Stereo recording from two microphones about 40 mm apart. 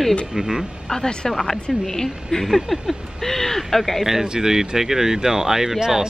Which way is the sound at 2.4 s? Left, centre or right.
Centre.